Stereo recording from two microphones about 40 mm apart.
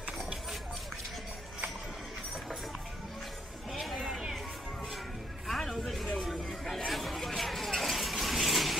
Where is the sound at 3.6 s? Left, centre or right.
Centre.